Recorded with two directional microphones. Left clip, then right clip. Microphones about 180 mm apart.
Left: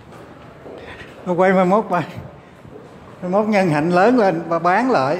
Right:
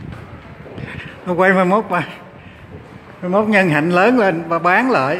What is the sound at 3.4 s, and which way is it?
Speech, 5° right (ahead or behind).